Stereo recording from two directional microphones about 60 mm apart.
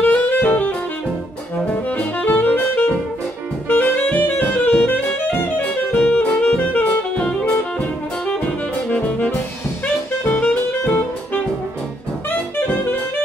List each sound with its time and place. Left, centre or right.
0.0 s music: left
1.7 s saxophone: left
8.9 s music: left
12.3 s saxophone: left